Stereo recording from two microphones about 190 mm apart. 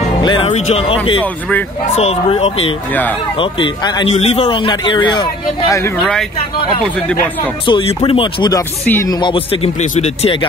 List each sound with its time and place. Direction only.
0.2 s speech: 30° left (ahead or behind)
2.9 s speech: 10° left (ahead or behind)
3.3 s speech: 25° left (ahead or behind)
7.6 s speech: 25° left (ahead or behind)